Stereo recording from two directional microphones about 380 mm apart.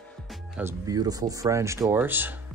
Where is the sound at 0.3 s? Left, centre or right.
Centre.